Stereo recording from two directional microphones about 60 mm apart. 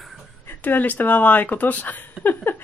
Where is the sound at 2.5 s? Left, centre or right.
Left.